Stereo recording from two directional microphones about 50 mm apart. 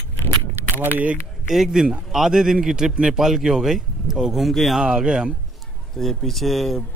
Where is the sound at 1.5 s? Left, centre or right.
Centre.